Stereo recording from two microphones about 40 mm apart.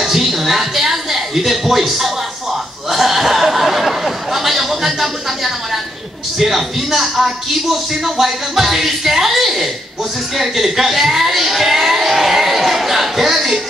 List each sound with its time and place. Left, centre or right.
0.0 s a man's voice: centre